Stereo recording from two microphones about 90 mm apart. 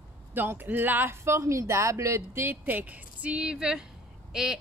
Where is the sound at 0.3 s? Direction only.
20° right (ahead or behind).